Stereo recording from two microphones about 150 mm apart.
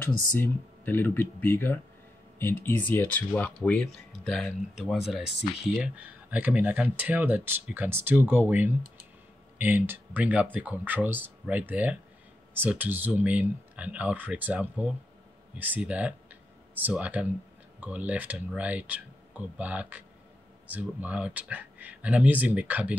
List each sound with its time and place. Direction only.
0.0 s speech: 15° left (ahead or behind)
5.9 s speech: 10° right (ahead or behind)